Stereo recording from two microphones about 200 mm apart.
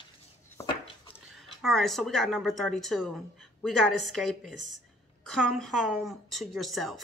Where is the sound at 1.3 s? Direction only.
Centre (ahead or behind).